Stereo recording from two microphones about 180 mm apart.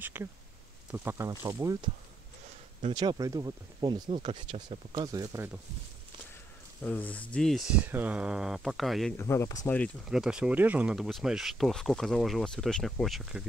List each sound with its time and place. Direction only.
0.0 s speech: 10° right (ahead or behind)
2.9 s speech: 25° right (ahead or behind)
6.8 s speech: 10° left (ahead or behind)
9.1 s speech: 15° left (ahead or behind)
10.0 s speech: 5° right (ahead or behind)